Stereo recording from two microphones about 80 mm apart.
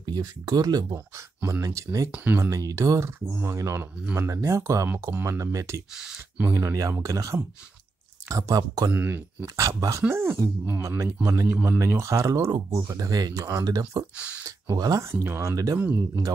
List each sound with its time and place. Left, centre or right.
0.0 s speech: right
0.9 s speech: right
2.0 s speech: centre
2.5 s speech: right
5.9 s speech: centre
6.5 s speech: right
8.9 s speech: right
9.6 s speech: right
10.0 s speech: right
14.1 s speech: centre
14.7 s speech: right
15.0 s speech: right